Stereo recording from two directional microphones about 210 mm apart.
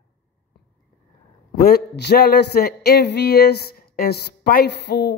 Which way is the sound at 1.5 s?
45° left (ahead or behind).